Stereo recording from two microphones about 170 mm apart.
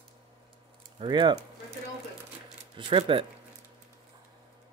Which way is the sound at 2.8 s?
30° right (ahead or behind).